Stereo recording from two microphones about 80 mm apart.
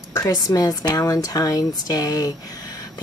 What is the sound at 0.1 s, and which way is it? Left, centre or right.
Speech, left.